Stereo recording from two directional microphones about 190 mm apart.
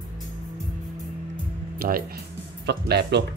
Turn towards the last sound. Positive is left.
turn(degrees=-60)  # may be behind; listen again after turning